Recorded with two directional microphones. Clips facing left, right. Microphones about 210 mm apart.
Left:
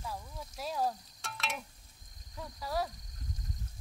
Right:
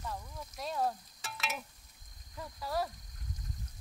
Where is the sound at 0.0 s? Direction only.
5° left (ahead or behind).